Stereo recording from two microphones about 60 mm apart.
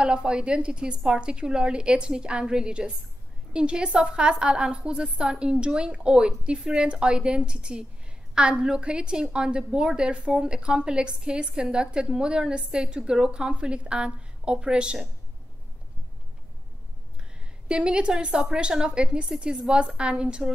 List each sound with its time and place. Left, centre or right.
0.0 s a woman's voice: centre
17.6 s a woman's voice: centre